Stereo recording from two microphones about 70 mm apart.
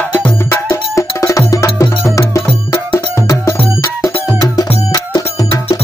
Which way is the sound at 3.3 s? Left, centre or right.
Left.